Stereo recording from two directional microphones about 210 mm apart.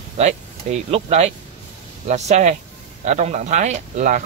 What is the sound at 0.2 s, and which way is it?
Speech, 30° right (ahead or behind).